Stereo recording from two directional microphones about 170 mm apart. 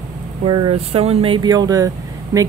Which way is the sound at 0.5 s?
30° right (ahead or behind).